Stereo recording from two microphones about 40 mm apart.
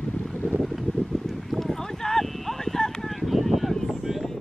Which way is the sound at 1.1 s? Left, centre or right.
Centre.